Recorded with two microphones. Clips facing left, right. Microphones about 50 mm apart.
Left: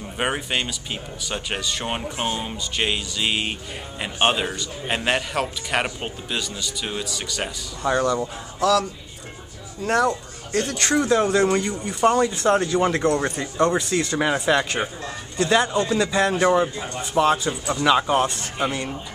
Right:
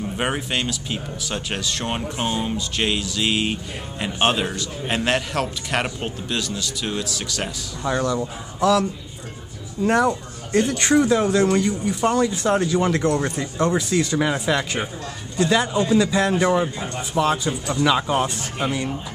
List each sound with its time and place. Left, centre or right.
0.2 s a man's voice: centre
8.5 s speech: centre
9.8 s speech: centre
11.0 s a man's voice: centre